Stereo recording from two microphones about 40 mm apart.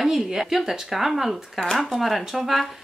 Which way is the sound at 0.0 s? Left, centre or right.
Centre.